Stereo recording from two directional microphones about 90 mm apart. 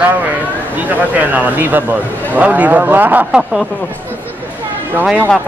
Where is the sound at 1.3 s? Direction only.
20° right (ahead or behind).